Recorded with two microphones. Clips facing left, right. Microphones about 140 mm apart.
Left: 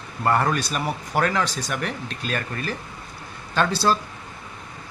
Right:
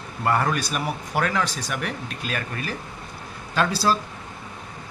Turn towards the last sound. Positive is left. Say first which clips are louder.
# left 1 dB
turn(degrees=-5)  # may be behind; listen again after turning